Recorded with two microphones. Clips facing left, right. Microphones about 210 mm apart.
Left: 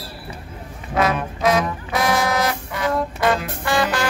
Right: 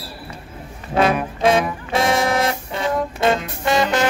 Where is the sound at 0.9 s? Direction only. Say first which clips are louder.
Right 3 dB; 30° right (ahead or behind).